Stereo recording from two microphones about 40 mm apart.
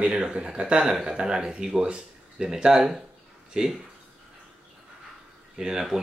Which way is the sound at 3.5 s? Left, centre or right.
Right.